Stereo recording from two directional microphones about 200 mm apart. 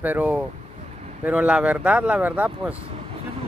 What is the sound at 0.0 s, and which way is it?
Speech, 10° right (ahead or behind).